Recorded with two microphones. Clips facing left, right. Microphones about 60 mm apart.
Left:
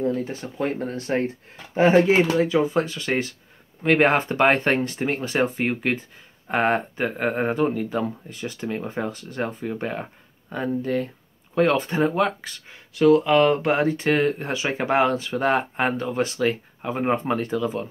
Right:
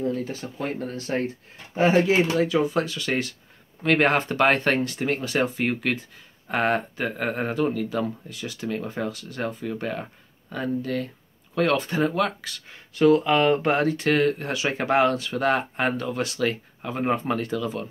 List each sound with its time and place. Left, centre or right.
0.0 s speech: left
2.5 s speech: centre
6.7 s speech: left
13.0 s speech: centre
13.8 s speech: centre